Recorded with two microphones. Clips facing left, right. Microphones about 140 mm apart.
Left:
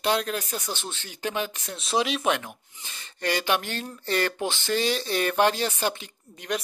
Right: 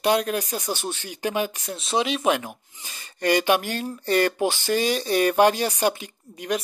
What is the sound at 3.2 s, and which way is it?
Speech, 10° right (ahead or behind).